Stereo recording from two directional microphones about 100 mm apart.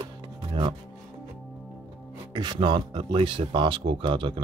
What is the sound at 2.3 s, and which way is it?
Speech, 50° right (ahead or behind).